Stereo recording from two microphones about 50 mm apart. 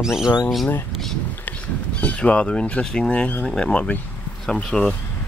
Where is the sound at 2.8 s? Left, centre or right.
Centre.